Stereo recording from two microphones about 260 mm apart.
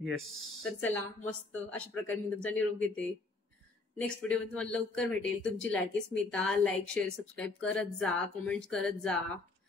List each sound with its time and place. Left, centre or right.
0.6 s speech: centre